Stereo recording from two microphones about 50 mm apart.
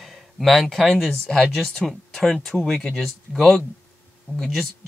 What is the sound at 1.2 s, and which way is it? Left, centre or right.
Speech, centre.